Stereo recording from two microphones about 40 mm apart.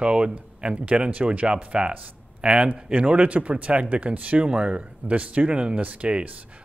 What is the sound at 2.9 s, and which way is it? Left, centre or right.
Speech, right.